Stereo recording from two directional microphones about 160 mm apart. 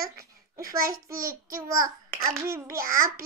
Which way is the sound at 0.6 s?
20° right (ahead or behind).